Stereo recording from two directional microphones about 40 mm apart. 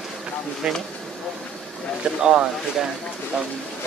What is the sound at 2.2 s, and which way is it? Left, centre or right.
Speech, right.